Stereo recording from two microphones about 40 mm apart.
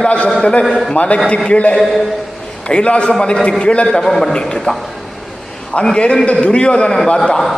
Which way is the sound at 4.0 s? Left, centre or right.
Centre.